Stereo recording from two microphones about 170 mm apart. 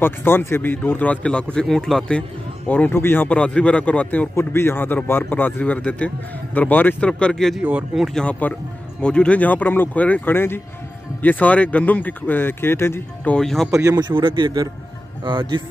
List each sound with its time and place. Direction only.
0.0 s a man's voice: 15° left (ahead or behind)
13.7 s speech: 20° right (ahead or behind)